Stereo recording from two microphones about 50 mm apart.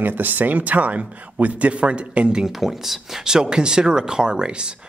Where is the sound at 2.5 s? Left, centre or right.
Centre.